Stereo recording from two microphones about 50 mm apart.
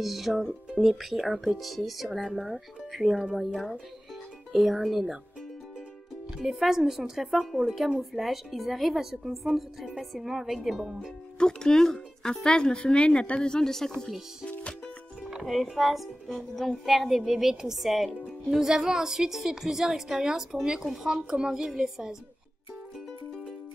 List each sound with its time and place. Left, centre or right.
0.0 s speech: centre
6.3 s a woman's voice: centre
11.3 s speech: centre
15.2 s a woman's voice: centre